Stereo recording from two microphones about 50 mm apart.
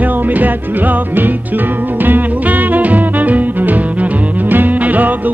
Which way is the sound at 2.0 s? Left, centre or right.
Right.